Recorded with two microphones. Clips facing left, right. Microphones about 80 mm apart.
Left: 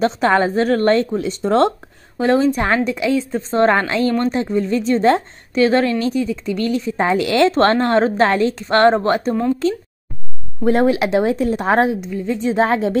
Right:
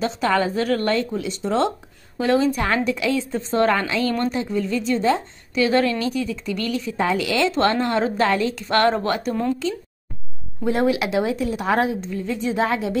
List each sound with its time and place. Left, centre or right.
0.0 s a woman's voice: left
2.1 s a woman's voice: left
4.3 s a woman's voice: left
5.5 s a woman's voice: left
10.6 s a woman's voice: left
11.9 s a woman's voice: centre
12.3 s a woman's voice: left